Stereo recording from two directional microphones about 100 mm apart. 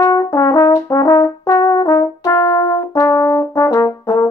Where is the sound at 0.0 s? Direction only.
30° left (ahead or behind).